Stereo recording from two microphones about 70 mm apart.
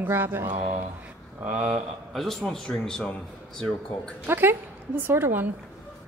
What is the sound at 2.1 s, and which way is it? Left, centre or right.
A woman's voice, centre.